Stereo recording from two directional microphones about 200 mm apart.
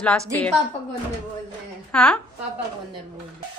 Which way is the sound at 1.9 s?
5° left (ahead or behind).